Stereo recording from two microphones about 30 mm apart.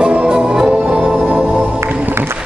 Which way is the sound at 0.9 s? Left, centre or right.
Right.